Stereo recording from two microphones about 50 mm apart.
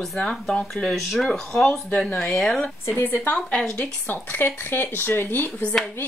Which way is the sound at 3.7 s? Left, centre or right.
Left.